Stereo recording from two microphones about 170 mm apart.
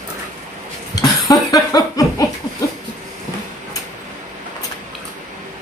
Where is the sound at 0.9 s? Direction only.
20° left (ahead or behind).